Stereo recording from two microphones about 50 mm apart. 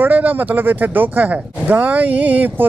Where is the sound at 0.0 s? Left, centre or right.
Right.